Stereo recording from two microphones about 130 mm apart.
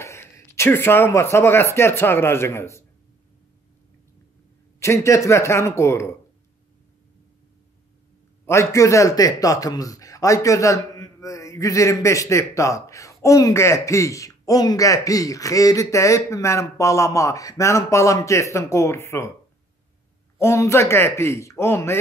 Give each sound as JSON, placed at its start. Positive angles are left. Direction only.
{"t": 0.0, "sound": "speech", "side_deg": 20}
{"t": 4.7, "sound": "a man's voice", "side_deg": 20}
{"t": 8.5, "sound": "a man's voice", "side_deg": 25}
{"t": 20.3, "sound": "a man's voice", "side_deg": 20}